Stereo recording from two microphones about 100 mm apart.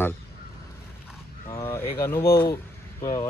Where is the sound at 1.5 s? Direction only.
30° left (ahead or behind).